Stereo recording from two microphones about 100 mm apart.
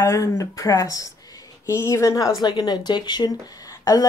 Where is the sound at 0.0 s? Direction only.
30° left (ahead or behind).